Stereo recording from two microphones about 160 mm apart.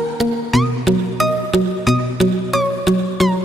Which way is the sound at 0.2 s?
Centre (ahead or behind).